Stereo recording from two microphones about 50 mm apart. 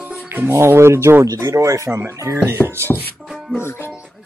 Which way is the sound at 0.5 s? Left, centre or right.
Right.